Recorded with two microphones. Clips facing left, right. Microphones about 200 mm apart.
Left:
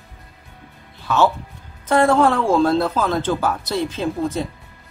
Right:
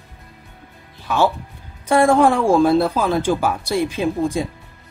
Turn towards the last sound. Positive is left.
turn(degrees=-10)  # may be behind; listen again after turning